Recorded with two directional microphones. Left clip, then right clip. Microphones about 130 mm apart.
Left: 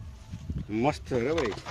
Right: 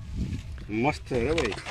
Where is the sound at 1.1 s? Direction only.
40° right (ahead or behind).